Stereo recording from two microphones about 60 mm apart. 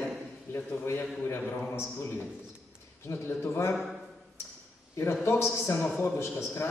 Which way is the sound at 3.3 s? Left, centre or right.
Left.